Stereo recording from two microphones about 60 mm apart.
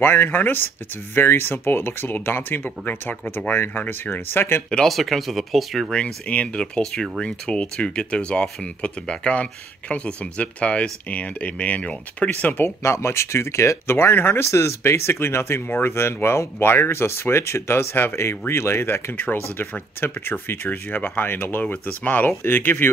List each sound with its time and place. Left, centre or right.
0.0 s speech: left
4.8 s speech: centre
5.9 s speech: centre
12.8 s speech: left
14.4 s speech: left